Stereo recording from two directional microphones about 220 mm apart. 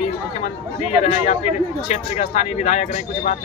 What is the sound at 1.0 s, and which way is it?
Speech, 30° left (ahead or behind).